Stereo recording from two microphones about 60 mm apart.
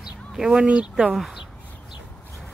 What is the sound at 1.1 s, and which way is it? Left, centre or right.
Speech, centre.